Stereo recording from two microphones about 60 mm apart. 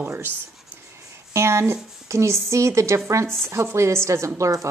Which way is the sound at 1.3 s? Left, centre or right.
Right.